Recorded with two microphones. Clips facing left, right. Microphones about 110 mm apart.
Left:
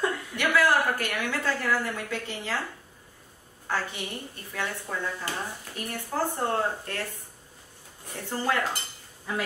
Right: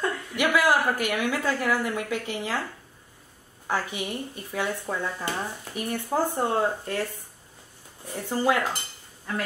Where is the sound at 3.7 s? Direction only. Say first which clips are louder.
Right 2 dB; 15° right (ahead or behind).